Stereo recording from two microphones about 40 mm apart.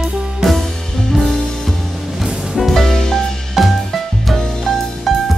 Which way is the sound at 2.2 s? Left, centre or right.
Centre.